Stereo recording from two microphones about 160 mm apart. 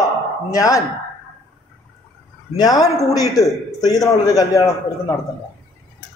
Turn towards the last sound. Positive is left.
turn(degrees=20)  # may be behind; listen again after turning